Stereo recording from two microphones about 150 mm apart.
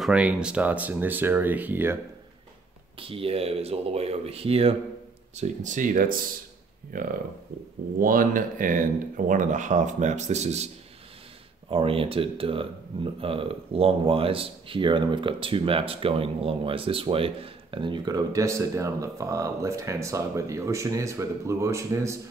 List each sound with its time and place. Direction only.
0.0 s speech: 10° right (ahead or behind)
3.0 s speech: 40° right (ahead or behind)
5.3 s speech: 50° right (ahead or behind)
11.7 s speech: 40° right (ahead or behind); by 22.2 s 20° right (ahead or behind)